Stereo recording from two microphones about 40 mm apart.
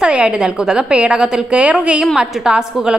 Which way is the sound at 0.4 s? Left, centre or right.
Centre.